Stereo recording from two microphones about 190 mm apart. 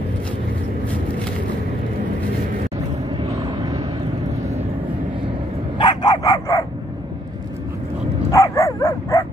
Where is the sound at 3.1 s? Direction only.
25° right (ahead or behind).